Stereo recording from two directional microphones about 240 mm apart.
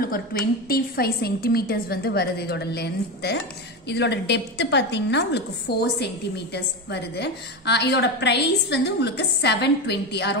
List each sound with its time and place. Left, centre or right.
0.0 s a woman's voice: left